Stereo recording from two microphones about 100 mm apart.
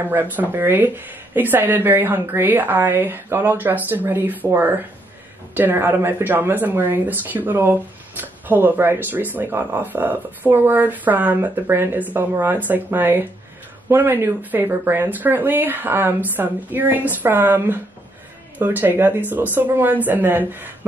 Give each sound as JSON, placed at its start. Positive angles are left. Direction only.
{"t": 0.0, "sound": "speech", "side_deg": -20}